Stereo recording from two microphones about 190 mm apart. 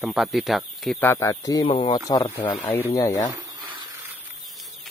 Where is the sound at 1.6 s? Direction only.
30° left (ahead or behind).